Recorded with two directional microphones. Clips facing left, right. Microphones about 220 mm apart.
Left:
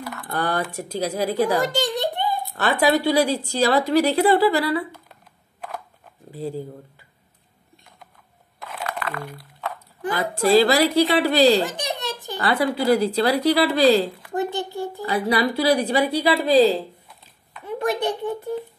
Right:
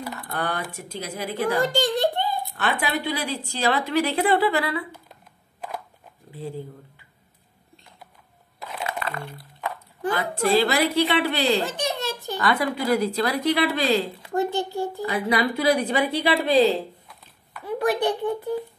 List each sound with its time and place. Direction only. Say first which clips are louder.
0.3 s a woman's voice: left 5 dB; 40° left (ahead or behind)
1.7 s a sound: right 1 dB; 20° left (ahead or behind)
2.5 s a woman's voice: left 10 dB; 40° left (ahead or behind)
8.8 s a sound: left 1 dB; 25° right (ahead or behind)
10.1 s a woman's voice: left 5 dB; 35° left (ahead or behind)
11.6 s giggle: even; 15° left (ahead or behind)
12.4 s a woman's voice: left 3 dB; 30° left (ahead or behind)
14.3 s a child's voice: right 3 dB; 20° left (ahead or behind)
15.0 s a woman's voice: left 3 dB; 35° left (ahead or behind)